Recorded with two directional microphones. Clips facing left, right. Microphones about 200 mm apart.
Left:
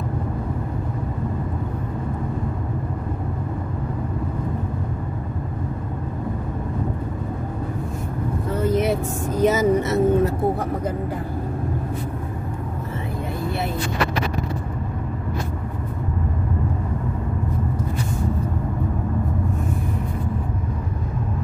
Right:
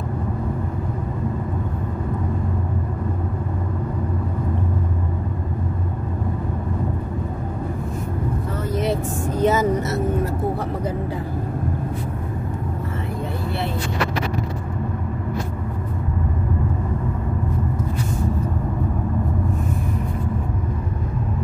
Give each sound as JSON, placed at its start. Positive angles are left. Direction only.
{"t": 9.4, "sound": "vehicle", "side_deg": 15}